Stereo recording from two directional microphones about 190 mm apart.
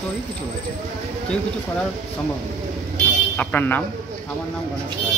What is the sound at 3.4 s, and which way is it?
Speech, 10° left (ahead or behind).